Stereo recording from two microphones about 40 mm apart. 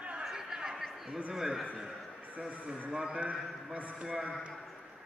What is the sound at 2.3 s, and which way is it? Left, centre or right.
A man's voice, right.